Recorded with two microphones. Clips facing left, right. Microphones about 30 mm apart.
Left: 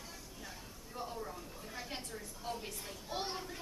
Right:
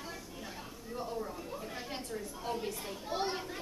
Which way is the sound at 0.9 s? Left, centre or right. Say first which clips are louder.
Right 4 dB; centre.